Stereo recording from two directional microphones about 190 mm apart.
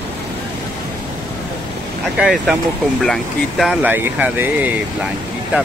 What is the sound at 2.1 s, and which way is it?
Speech, centre (ahead or behind).